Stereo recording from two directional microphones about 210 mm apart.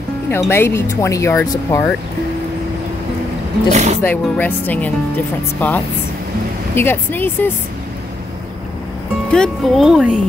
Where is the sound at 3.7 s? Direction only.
35° right (ahead or behind).